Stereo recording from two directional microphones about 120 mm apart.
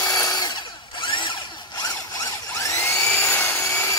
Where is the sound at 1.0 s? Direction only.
40° left (ahead or behind).